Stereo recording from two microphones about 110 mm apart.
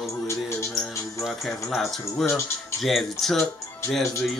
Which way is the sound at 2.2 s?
25° left (ahead or behind).